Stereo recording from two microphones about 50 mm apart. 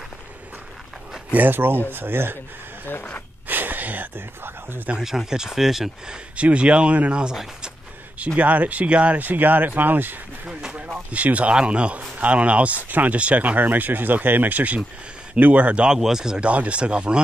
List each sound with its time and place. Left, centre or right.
1.3 s speech: right
3.4 s a sound: right
4.4 s speech: right
5.0 s speech: centre
6.3 s speech: right
8.4 s speech: right
10.4 s speech: centre
11.1 s speech: right
15.9 s speech: centre
16.3 s speech: right